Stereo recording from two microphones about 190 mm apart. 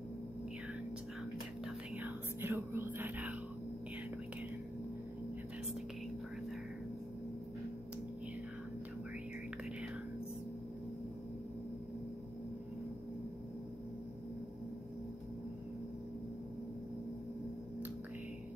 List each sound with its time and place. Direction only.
2.0 s whispering: 10° right (ahead or behind)